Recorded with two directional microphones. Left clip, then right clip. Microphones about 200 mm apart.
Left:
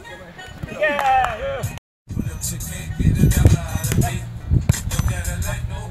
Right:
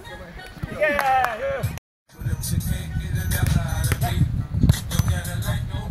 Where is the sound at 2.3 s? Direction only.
50° left (ahead or behind).